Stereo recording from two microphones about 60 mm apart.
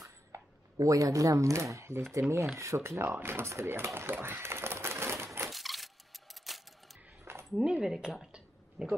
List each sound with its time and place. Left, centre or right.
0.0 s a sound: right
2.5 s speech: right
3.1 s speech: right
5.5 s keys jangling: centre
7.5 s speech: centre